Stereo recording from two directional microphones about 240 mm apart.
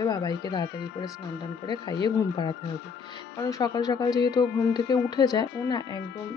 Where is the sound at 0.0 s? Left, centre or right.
Centre.